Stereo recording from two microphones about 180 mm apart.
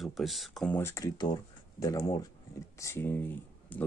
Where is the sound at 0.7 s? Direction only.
15° left (ahead or behind).